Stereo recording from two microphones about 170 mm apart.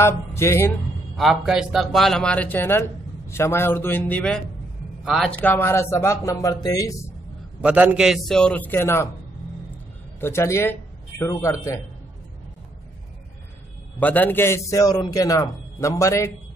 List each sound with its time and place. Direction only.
0.0 s speech: 15° left (ahead or behind)
1.1 s a man's voice: centre (ahead or behind)
5.4 s a man's voice: 10° left (ahead or behind)
7.6 s a man's voice: 10° right (ahead or behind); by 9.1 s 15° left (ahead or behind)
10.2 s a man's voice: 15° left (ahead or behind)
13.9 s a man's voice: 10° left (ahead or behind)